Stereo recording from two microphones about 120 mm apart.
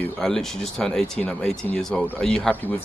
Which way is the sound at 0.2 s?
5° left (ahead or behind).